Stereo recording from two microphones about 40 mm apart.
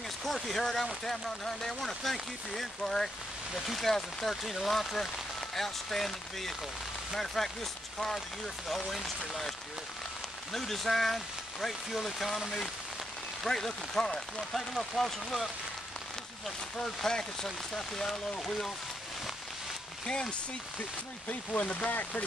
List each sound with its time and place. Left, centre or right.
0.2 s speech: centre
8.6 s speech: centre
10.5 s speech: centre
13.4 s speech: centre
16.7 s speech: centre
21.6 s speech: left